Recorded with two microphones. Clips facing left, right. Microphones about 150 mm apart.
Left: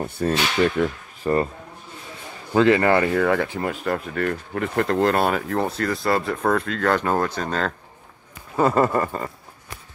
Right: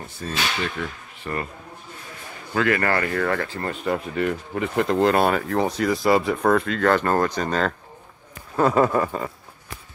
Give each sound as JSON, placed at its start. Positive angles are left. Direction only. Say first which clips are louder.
{"t": 0.0, "sound": "speech", "louder": "left 10 dB", "side_deg": 60}
{"t": 0.7, "sound": "speech", "louder": "left 8 dB", "side_deg": 40}
{"t": 2.5, "sound": "speech", "louder": "left 5 dB", "side_deg": 25}
{"t": 3.7, "sound": "speech", "louder": "even", "side_deg": 0}
{"t": 8.5, "sound": "speech", "louder": "even", "side_deg": 5}